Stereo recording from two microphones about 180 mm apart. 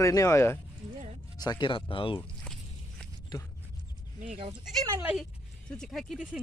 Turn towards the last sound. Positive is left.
turn(degrees=0)  # may be behind; listen again after turning